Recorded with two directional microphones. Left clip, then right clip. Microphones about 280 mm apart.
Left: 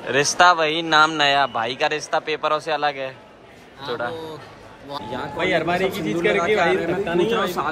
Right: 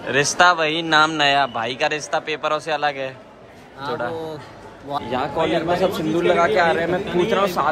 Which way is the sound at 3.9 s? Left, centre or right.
Centre.